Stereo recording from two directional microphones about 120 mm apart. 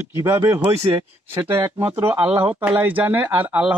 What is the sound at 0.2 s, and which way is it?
Speech, 25° right (ahead or behind).